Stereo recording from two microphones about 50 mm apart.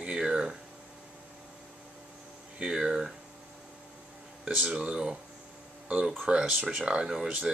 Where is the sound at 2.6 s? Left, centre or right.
Centre.